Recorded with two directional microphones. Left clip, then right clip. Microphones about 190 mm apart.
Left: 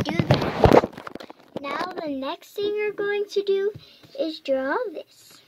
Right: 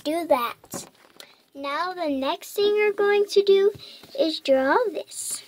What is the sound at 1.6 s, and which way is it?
A child's voice, 10° right (ahead or behind).